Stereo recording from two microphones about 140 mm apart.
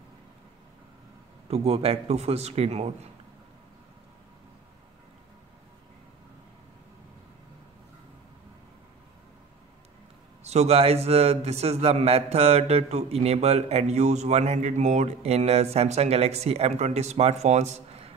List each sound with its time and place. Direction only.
1.5 s a man's voice: 45° right (ahead or behind)
10.4 s a man's voice: 50° right (ahead or behind)